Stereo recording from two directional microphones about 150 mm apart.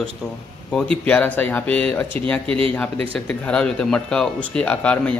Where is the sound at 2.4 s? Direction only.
40° right (ahead or behind).